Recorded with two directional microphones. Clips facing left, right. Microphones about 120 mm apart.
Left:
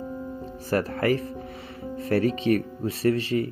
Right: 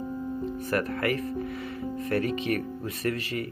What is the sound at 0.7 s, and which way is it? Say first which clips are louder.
A man's voice: left 5 dB; 30° left (ahead or behind).